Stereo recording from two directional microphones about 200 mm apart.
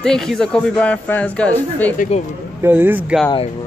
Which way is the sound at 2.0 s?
35° left (ahead or behind).